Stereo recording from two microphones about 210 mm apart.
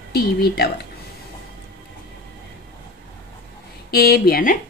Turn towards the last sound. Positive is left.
turn(degrees=45)  # may be behind; listen again after turning